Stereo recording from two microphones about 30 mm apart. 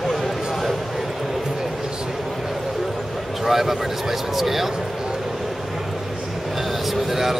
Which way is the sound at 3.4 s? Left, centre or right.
Centre.